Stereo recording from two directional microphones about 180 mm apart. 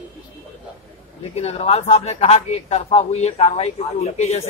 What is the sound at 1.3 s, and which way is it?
A man's voice, 35° left (ahead or behind).